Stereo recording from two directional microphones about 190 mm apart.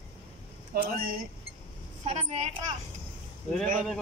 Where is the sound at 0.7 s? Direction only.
50° right (ahead or behind).